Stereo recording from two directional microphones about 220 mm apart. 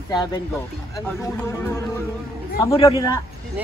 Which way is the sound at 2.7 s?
25° left (ahead or behind).